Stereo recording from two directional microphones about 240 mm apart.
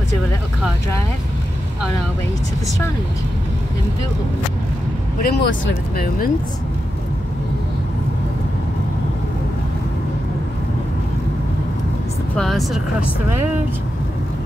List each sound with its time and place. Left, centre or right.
5.2 s speech: left
12.4 s speech: centre